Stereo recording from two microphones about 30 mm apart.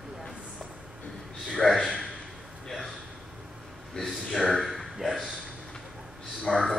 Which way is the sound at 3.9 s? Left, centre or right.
Centre.